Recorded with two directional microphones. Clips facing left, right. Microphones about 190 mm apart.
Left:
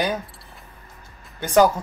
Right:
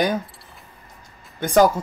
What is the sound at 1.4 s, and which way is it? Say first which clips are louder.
Speech: right 1 dB; 10° right (ahead or behind).